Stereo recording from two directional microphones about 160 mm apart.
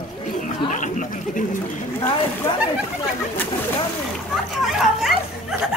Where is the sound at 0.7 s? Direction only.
50° left (ahead or behind).